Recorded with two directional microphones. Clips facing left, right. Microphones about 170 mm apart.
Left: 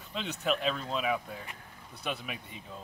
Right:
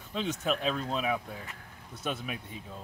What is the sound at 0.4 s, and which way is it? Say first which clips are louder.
Speech: left 3 dB; centre (ahead or behind).